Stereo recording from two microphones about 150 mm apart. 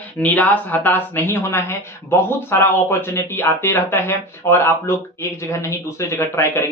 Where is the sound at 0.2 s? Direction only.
10° left (ahead or behind).